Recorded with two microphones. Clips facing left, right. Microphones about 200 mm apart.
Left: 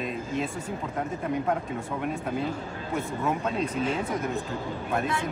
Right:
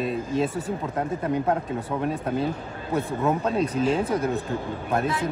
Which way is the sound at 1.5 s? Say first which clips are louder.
Right 3 dB; 35° right (ahead or behind).